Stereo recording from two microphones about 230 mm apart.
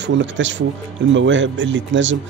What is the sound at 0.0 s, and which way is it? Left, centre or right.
Speech, right.